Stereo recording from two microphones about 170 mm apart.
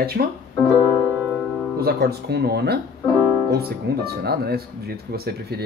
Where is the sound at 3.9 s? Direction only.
70° right (ahead or behind).